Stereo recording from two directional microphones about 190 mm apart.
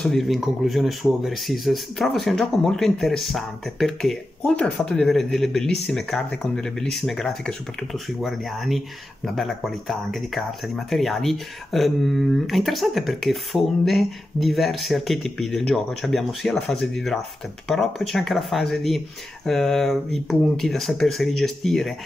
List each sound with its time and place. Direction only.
0.0 s speech: centre (ahead or behind)